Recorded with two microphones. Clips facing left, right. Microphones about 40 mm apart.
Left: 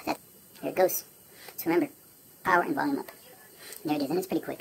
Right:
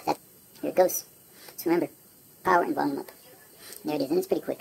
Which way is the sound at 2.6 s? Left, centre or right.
Centre.